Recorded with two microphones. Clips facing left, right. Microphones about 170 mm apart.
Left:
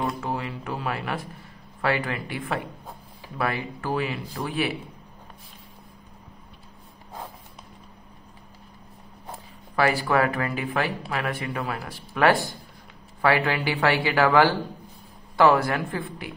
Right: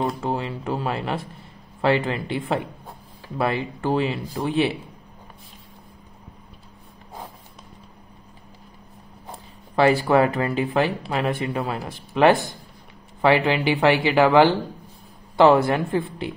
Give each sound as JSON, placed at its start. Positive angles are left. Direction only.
{"t": 0.0, "sound": "a sound", "side_deg": -25}
{"t": 1.8, "sound": "speech", "side_deg": -25}
{"t": 9.8, "sound": "speech", "side_deg": -25}